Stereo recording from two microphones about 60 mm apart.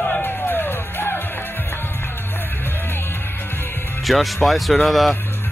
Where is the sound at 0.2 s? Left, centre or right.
Left.